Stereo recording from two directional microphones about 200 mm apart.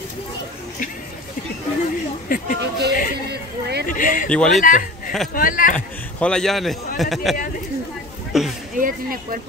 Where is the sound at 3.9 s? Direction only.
45° left (ahead or behind).